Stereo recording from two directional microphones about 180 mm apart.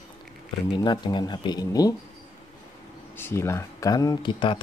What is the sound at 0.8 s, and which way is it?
Speech, 25° left (ahead or behind).